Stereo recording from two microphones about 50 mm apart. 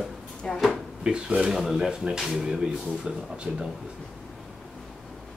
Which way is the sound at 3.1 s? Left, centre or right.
Centre.